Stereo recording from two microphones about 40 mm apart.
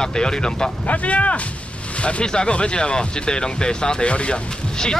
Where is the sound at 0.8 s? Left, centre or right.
Left.